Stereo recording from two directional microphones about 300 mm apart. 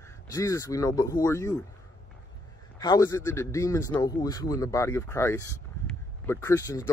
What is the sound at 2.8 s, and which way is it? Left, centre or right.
Speech, centre.